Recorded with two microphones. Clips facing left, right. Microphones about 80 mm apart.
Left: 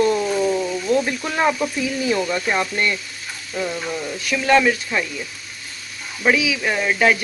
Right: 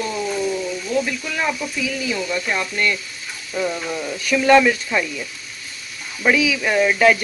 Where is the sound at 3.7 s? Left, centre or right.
Centre.